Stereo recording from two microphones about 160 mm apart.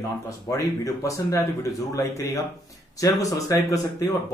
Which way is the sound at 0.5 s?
20° left (ahead or behind).